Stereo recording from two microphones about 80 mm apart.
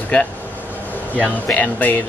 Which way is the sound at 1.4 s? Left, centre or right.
Centre.